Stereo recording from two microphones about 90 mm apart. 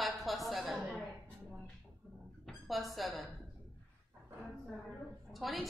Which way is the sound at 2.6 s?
Centre (ahead or behind).